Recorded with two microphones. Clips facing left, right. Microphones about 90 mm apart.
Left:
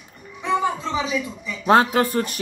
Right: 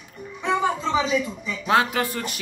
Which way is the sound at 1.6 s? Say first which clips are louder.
Left 5 dB; 35° left (ahead or behind).